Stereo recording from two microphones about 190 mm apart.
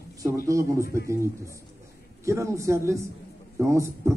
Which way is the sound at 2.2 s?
15° right (ahead or behind).